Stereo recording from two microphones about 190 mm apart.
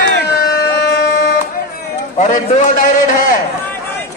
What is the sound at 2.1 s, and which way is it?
A man's voice, 40° left (ahead or behind).